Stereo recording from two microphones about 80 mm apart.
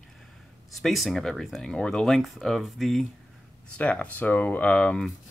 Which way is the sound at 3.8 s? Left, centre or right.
Centre.